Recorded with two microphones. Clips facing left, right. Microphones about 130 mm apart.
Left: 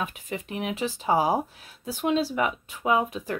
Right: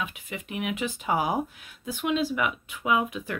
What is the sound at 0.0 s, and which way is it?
A woman's voice, 40° left (ahead or behind).